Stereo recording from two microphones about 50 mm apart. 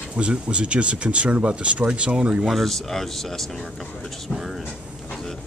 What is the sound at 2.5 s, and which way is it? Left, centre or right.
Speech, centre.